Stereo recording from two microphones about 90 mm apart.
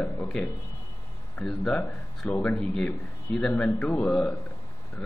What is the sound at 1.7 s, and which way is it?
A man's voice, 20° left (ahead or behind).